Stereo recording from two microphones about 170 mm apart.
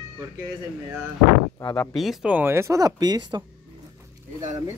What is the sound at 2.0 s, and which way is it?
Speech, 5° right (ahead or behind).